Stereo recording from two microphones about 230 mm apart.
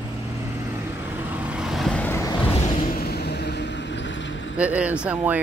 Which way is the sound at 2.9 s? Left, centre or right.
Left.